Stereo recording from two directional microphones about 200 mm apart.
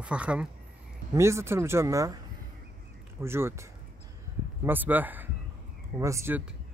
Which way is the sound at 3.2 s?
10° right (ahead or behind).